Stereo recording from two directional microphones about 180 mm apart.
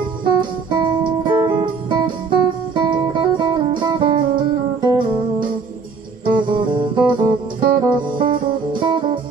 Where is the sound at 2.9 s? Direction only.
25° right (ahead or behind).